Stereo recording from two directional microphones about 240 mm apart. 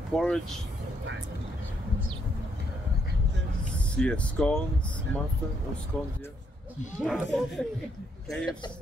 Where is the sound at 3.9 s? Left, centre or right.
Centre.